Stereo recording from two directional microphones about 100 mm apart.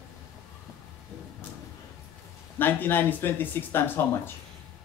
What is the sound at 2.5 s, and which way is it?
A man's voice, 20° left (ahead or behind).